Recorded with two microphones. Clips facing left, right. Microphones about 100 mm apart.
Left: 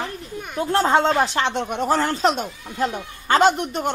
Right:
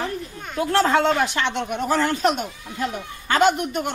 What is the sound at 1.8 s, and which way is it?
Speech, 45° left (ahead or behind).